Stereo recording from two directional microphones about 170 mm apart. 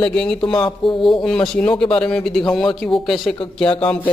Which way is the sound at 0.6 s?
25° left (ahead or behind).